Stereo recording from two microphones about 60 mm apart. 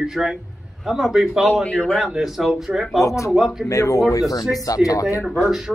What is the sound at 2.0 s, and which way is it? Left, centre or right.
Speech, centre.